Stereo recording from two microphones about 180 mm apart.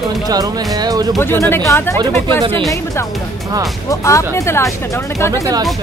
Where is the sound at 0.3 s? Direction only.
20° right (ahead or behind).